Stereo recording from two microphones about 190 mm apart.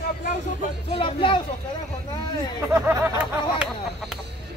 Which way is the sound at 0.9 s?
30° left (ahead or behind).